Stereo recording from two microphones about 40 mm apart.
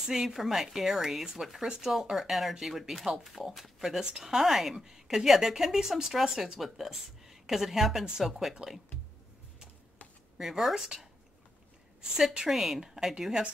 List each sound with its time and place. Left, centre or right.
0.1 s speech: centre
10.3 s speech: centre
12.4 s speech: centre
12.8 s a woman's voice: centre